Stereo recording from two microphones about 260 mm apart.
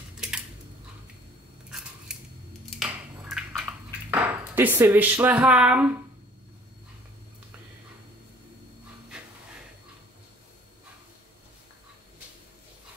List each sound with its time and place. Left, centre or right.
1.7 s scissors: centre
2.7 s ping: centre